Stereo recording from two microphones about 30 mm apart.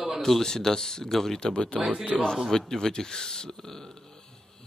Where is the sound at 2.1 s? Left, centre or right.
Centre.